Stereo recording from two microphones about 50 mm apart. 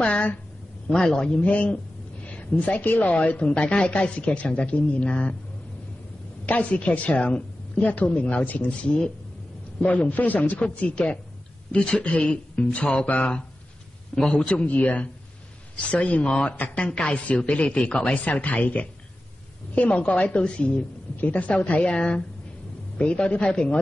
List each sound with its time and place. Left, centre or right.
0.0 s speech: left
1.0 s speech: centre
1.4 s a woman's voice: left
6.4 s a woman's voice: left
9.8 s a woman's voice: left
16.2 s a woman's voice: centre
18.2 s a woman's voice: left
21.9 s speech: centre
22.9 s a woman's voice: left